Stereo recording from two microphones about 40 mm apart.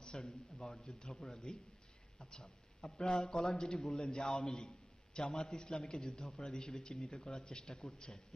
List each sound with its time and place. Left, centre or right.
0.0 s a sound: left
0.8 s a man's voice: left
1.1 s speech: centre
2.1 s a man's voice: left
6.6 s a man's voice: centre
7.2 s speech: centre